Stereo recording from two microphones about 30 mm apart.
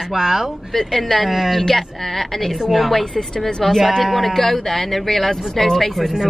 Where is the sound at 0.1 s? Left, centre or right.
Centre.